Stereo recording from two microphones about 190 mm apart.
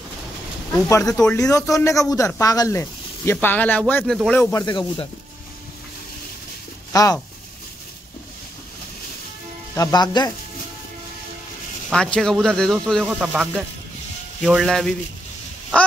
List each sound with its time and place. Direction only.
0.8 s speech: 15° left (ahead or behind)
6.9 s speech: 20° left (ahead or behind)
9.8 s speech: 20° left (ahead or behind)
11.9 s speech: 5° left (ahead or behind)